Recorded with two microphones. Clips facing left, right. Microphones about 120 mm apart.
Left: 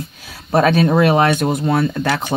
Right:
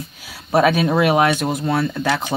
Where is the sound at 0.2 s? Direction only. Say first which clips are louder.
Left 1 dB; 10° right (ahead or behind).